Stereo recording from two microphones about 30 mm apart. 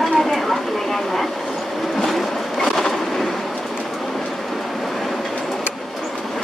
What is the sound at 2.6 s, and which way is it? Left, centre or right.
Train, centre.